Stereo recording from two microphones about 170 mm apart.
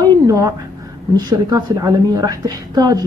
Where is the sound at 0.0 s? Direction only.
20° right (ahead or behind).